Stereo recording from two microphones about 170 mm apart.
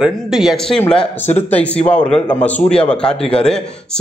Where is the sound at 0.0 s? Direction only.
Centre (ahead or behind).